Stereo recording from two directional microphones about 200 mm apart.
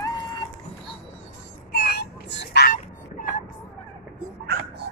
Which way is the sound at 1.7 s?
50° left (ahead or behind).